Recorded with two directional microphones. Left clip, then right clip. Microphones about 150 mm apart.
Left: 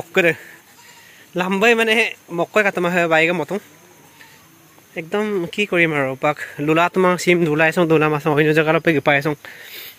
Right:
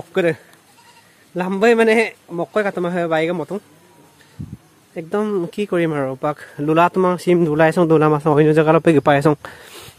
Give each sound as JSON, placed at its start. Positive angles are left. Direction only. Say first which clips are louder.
{"t": 0.1, "sound": "a man's voice", "louder": "left 2 dB", "side_deg": 0}
{"t": 4.9, "sound": "speech", "louder": "right 1 dB", "side_deg": -35}